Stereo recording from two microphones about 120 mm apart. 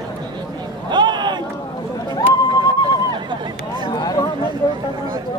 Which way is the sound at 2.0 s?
35° left (ahead or behind).